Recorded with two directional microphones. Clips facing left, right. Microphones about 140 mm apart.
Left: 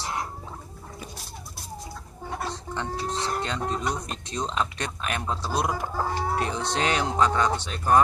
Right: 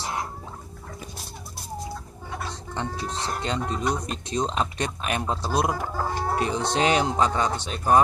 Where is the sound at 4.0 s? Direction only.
20° right (ahead or behind).